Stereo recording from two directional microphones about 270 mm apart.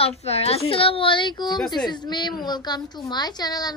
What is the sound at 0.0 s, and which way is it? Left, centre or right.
A woman's voice, left.